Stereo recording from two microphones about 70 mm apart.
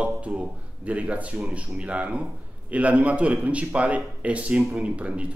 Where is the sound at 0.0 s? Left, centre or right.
Centre.